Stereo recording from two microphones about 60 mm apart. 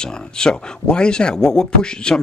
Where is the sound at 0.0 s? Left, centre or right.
Centre.